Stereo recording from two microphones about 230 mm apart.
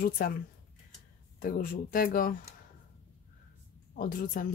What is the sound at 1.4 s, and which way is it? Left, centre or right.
Speech, left.